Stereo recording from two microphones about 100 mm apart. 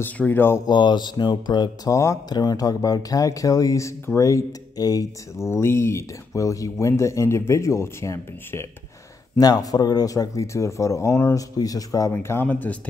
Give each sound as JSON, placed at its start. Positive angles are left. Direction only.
{"t": 0.0, "sound": "speech", "side_deg": 20}
{"t": 0.7, "sound": "speech", "side_deg": 50}
{"t": 1.9, "sound": "speech", "side_deg": 30}
{"t": 5.4, "sound": "speech", "side_deg": 25}
{"t": 9.4, "sound": "speech", "side_deg": 40}
{"t": 12.1, "sound": "speech", "side_deg": 25}